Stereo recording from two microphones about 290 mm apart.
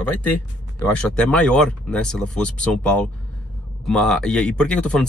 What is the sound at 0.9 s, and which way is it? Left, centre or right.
Speech, centre.